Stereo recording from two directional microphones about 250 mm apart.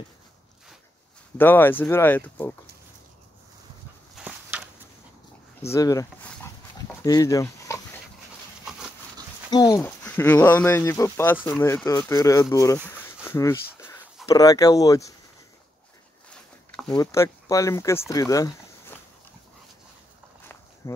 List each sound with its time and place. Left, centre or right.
1.4 s speech: centre
4.1 s a sound: centre
5.7 s dog: centre
8.6 s a sound: centre
9.5 s speech: centre
16.9 s speech: centre
20.8 s speech: centre